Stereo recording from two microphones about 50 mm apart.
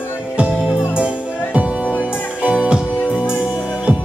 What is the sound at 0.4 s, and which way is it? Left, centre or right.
Music, right.